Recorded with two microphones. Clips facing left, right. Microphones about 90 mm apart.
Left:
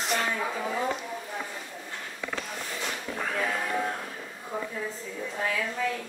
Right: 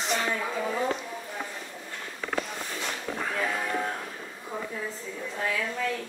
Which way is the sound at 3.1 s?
Centre (ahead or behind).